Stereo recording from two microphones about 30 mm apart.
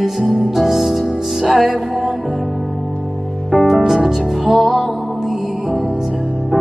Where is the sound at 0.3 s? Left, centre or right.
Centre.